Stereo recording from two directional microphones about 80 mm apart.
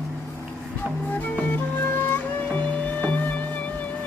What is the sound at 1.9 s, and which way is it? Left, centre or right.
Music, left.